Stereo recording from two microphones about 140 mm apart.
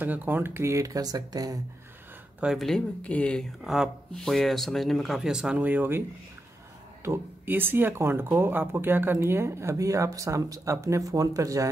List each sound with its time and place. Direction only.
0.0 s speech: 15° right (ahead or behind)
2.4 s speech: centre (ahead or behind); by 11.7 s 25° right (ahead or behind)